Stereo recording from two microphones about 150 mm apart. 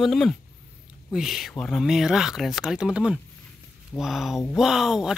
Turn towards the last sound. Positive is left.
turn(degrees=-5)  # may be behind; listen again after turning